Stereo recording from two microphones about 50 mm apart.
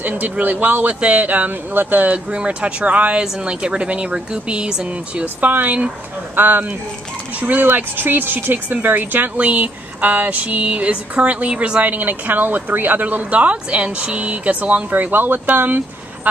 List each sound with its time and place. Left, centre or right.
0.0 s speech: right
2.3 s speech: right
5.2 s speech: right; by 11.8 s centre
11.8 s speech: right